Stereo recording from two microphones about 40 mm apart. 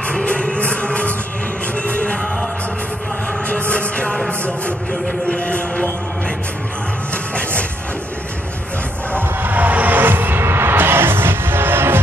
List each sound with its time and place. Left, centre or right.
0.1 s music: left
3.4 s music: left
9.4 s music: right